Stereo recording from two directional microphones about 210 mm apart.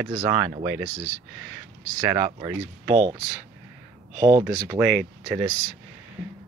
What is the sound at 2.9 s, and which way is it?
Speech, 25° right (ahead or behind).